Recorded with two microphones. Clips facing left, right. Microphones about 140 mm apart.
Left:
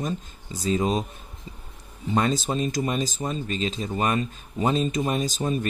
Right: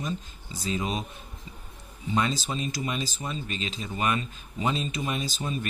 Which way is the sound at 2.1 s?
50° left (ahead or behind).